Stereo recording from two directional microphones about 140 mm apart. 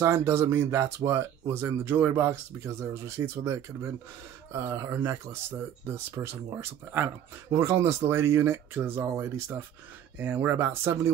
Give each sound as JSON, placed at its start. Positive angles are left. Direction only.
{"t": 0.0, "sound": "speech", "side_deg": -15}